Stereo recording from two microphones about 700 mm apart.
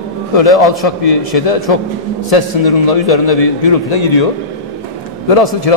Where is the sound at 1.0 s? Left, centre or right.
Left.